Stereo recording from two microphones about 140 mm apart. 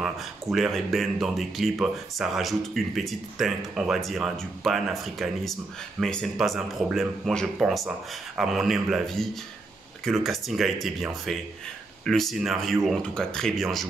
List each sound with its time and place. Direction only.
0.0 s speech: centre (ahead or behind)